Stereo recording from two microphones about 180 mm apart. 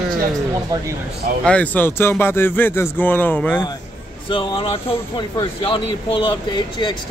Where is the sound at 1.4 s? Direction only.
10° left (ahead or behind).